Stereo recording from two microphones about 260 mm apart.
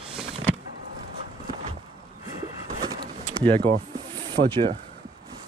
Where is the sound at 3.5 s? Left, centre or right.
Centre.